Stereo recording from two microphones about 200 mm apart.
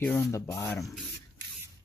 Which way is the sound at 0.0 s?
10° left (ahead or behind).